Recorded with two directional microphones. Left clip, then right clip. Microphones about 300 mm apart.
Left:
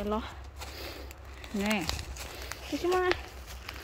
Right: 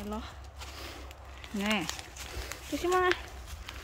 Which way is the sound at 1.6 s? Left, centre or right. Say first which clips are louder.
Even; centre.